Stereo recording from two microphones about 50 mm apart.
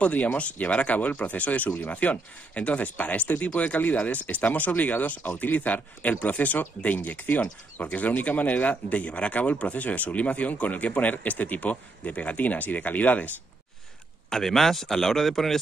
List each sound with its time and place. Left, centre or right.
0.0 s speech: left
14.3 s speech: centre